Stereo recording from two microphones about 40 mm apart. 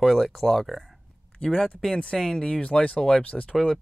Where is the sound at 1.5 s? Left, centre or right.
Left.